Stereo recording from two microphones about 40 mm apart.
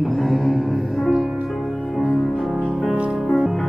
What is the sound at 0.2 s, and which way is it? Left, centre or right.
Music, centre.